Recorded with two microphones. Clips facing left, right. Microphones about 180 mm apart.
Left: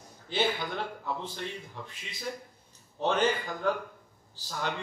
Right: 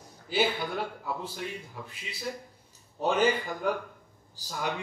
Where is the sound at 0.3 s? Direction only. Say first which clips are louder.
Right 2 dB; 10° right (ahead or behind).